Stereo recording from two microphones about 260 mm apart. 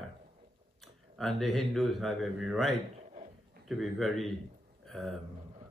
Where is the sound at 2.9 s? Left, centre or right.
Right.